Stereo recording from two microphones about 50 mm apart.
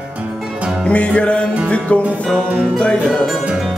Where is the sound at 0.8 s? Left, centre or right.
Left.